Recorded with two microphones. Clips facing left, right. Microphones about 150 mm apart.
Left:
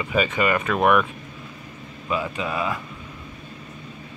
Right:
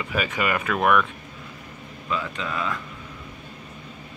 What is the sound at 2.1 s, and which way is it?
Speech, 15° left (ahead or behind).